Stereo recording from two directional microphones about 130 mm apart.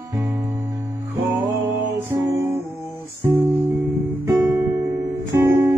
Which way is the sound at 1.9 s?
20° right (ahead or behind).